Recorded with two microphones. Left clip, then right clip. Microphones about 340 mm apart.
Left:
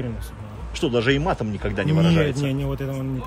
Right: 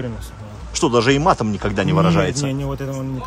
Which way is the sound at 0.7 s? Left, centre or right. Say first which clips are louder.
Right 5 dB; centre.